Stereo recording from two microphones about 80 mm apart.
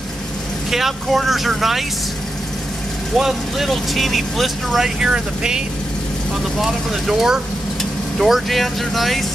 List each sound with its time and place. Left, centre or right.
0.7 s speech: centre
3.2 s speech: centre
6.6 s speech: centre